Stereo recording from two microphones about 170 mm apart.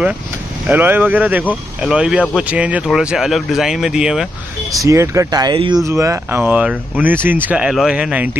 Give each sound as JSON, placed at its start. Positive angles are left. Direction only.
{"t": 0.7, "sound": "speech", "side_deg": -10}
{"t": 4.8, "sound": "speech", "side_deg": -20}